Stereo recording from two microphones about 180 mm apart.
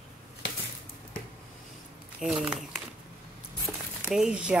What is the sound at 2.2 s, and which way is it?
Speech, centre (ahead or behind).